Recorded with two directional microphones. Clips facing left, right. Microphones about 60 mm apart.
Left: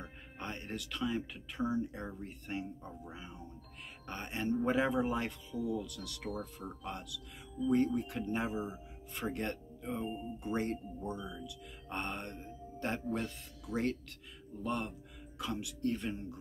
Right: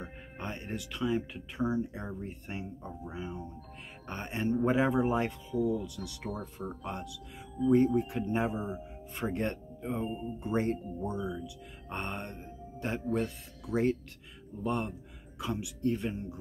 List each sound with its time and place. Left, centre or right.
0.0 s speech: centre
5.8 s speech: centre
8.5 s speech: right; by 16.3 s centre